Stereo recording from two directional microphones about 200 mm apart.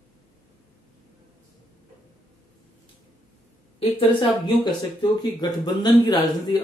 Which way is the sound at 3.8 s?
25° left (ahead or behind).